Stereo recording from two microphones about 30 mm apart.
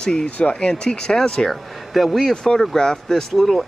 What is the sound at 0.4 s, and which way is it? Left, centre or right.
Speech, left.